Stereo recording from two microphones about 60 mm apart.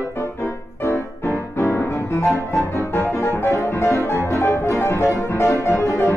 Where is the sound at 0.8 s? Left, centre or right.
Left.